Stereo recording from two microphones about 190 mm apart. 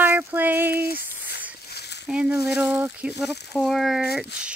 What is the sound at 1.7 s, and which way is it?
Frying, 60° left (ahead or behind).